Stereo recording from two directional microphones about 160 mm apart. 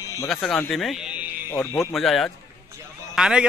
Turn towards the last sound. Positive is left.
turn(degrees=-5)  # may be behind; listen again after turning